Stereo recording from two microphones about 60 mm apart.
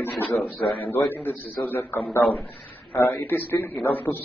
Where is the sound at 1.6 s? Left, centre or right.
Left.